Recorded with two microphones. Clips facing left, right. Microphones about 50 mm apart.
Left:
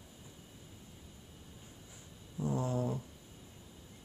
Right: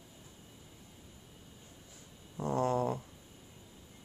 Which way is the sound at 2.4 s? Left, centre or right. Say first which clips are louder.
Right 4 dB; right.